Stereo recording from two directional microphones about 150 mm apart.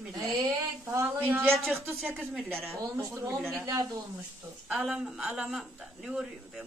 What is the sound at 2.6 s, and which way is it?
Speech, 15° right (ahead or behind).